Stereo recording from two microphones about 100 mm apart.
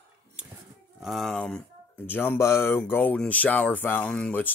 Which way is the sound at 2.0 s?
20° left (ahead or behind).